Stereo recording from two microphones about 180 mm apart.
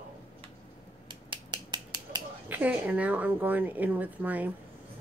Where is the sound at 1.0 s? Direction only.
25° right (ahead or behind).